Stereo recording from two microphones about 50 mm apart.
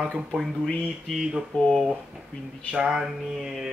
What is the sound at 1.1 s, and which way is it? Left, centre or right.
Speech, centre.